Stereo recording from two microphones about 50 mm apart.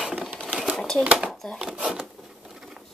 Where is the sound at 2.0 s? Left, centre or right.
Centre.